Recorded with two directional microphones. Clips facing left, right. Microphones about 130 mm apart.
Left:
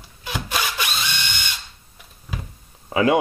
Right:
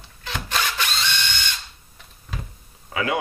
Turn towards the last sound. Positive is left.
turn(degrees=30)  # may be behind; listen again after turning